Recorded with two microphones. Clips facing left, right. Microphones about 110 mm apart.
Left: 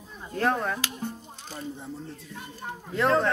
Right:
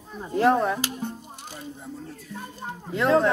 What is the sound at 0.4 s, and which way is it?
Speech, 10° right (ahead or behind).